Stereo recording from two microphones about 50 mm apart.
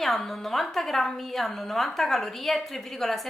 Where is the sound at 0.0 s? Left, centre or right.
Centre.